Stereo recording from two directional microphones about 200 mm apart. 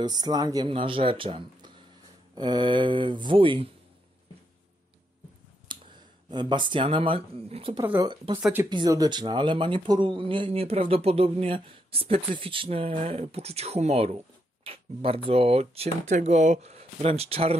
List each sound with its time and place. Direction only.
0.0 s speech: 20° right (ahead or behind)
5.7 s clicking: 25° right (ahead or behind)
6.3 s speech: 25° right (ahead or behind)
7.8 s speech: 10° right (ahead or behind)
8.6 s speech: 20° right (ahead or behind)